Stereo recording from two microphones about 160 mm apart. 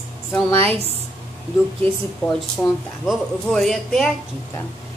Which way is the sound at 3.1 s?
Centre (ahead or behind).